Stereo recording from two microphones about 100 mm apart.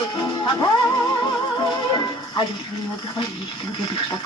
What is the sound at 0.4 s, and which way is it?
Music, 35° left (ahead or behind).